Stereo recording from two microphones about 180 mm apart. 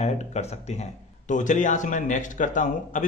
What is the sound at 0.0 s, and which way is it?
Speech, 40° left (ahead or behind).